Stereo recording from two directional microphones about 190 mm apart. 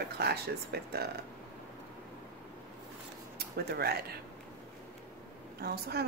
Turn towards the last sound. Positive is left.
turn(degrees=-55)  # may be behind; listen again after turning